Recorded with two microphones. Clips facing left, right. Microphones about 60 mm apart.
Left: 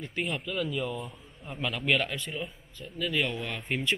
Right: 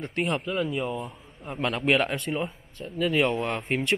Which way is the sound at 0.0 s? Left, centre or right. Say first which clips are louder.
Right 5 dB; right.